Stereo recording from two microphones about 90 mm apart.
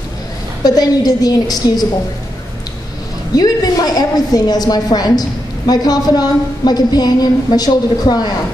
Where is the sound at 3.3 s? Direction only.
45° left (ahead or behind).